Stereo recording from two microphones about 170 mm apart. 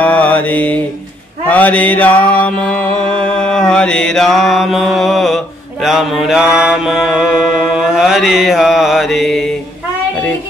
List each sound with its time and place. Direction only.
0.0 s mantra: 10° left (ahead or behind)